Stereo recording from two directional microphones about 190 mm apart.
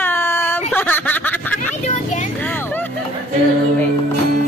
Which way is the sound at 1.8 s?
40° left (ahead or behind).